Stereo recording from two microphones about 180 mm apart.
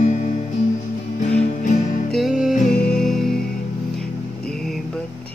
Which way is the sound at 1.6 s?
45° left (ahead or behind).